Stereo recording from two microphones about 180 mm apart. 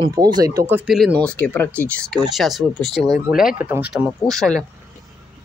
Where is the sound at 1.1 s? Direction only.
10° left (ahead or behind).